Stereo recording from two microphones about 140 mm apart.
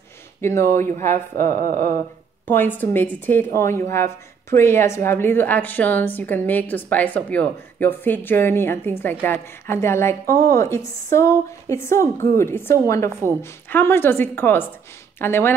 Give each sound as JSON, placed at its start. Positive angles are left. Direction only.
{"t": 0.4, "sound": "speech", "side_deg": 20}
{"t": 1.3, "sound": "speech", "side_deg": -90}
{"t": 2.4, "sound": "a woman's voice", "side_deg": 15}